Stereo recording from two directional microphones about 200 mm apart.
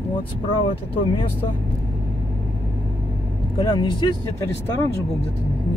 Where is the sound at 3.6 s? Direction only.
20° left (ahead or behind).